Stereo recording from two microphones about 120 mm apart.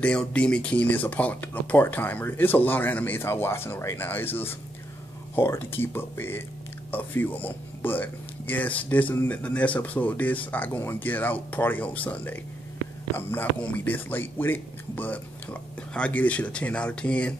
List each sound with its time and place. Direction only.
0.0 s speech: 10° left (ahead or behind)